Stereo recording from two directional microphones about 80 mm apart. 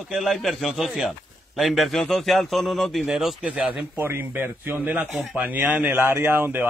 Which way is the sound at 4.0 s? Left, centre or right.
Right.